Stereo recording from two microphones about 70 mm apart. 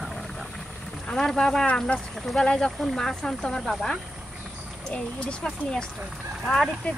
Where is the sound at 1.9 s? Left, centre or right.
Centre.